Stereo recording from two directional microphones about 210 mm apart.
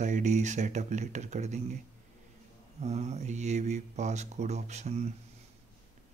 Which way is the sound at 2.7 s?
30° right (ahead or behind).